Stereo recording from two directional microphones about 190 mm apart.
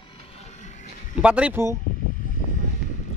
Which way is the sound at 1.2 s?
5° right (ahead or behind).